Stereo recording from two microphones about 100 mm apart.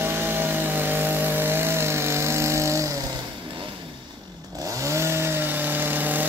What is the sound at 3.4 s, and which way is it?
Vehicle, 60° right (ahead or behind).